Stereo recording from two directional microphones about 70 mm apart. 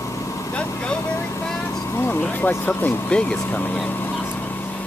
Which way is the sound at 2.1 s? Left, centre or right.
Left.